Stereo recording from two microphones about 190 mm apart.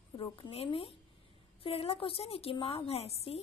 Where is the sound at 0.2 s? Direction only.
30° left (ahead or behind).